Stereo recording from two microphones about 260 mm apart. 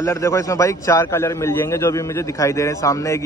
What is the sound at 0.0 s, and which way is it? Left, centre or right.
A man's voice, centre.